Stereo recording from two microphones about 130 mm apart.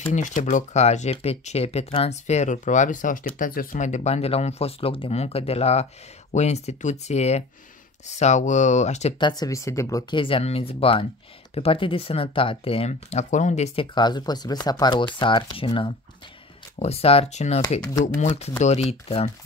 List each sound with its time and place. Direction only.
0.0 s speech: 70° left (ahead or behind)
9.2 s speech: 30° left (ahead or behind)
10.1 s speech: 45° left (ahead or behind); by 13.7 s 65° left (ahead or behind)
13.7 s speech: 35° left (ahead or behind)
16.7 s speech: 50° left (ahead or behind)